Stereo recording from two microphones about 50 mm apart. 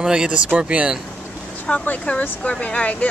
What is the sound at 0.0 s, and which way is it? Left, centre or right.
Speech, centre.